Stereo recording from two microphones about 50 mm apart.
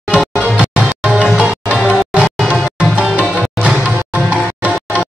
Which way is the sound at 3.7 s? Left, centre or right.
Right.